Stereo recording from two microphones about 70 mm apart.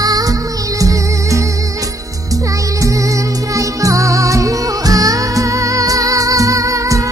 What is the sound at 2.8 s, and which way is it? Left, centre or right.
Music, right.